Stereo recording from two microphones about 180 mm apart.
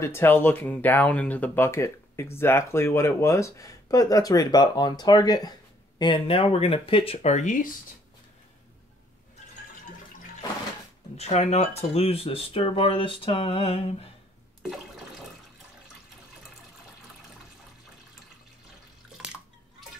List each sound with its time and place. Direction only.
0.0 s speech: 15° left (ahead or behind); by 7.7 s 45° left (ahead or behind)
11.1 s speech: 35° left (ahead or behind)
14.6 s water: centre (ahead or behind)
19.0 s bathtub: 5° right (ahead or behind)